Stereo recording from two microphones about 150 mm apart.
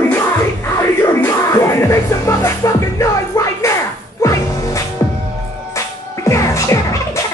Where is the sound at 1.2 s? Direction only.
20° left (ahead or behind).